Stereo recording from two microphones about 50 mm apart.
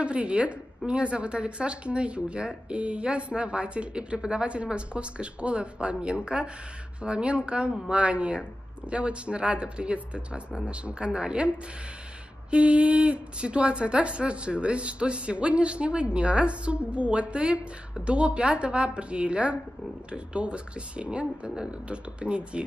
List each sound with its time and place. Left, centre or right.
0.0 s speech: right